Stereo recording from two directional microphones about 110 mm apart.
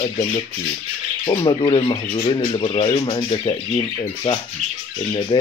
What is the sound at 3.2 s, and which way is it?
Speech, 50° left (ahead or behind).